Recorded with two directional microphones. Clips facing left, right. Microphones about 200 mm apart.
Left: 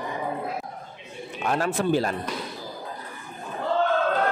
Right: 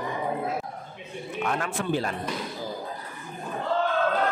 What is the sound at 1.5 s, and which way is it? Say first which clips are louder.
Speech: left 5 dB; 35° left (ahead or behind).